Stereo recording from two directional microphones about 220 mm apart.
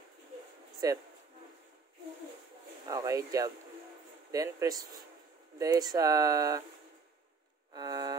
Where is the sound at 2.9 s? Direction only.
15° right (ahead or behind).